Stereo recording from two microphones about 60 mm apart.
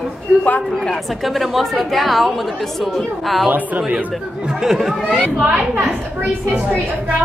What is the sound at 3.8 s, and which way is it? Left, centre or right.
Speech, centre.